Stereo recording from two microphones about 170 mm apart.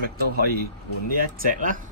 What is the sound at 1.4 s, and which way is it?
Speech, 50° right (ahead or behind).